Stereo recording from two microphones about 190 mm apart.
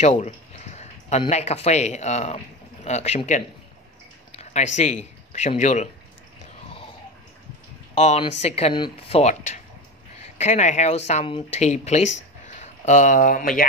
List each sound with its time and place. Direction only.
0.0 s speech: 35° left (ahead or behind)
7.9 s speech: 35° left (ahead or behind)